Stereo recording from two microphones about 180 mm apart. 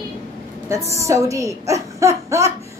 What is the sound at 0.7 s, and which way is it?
A woman's voice, 15° right (ahead or behind).